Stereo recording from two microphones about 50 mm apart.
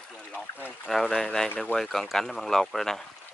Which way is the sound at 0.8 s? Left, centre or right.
Centre.